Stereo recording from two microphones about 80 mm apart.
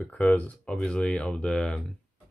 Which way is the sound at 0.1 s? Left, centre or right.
Centre.